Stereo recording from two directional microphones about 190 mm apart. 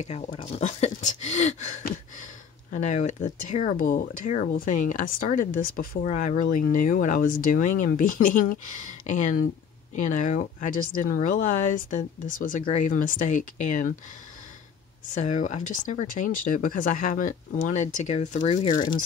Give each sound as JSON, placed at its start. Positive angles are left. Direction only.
{"t": 0.0, "sound": "speech", "side_deg": 30}
{"t": 15.1, "sound": "speech", "side_deg": 40}
{"t": 18.4, "sound": "speech", "side_deg": 30}